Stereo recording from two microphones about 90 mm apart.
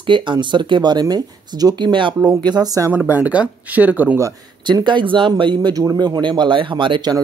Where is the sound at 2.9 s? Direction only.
20° right (ahead or behind).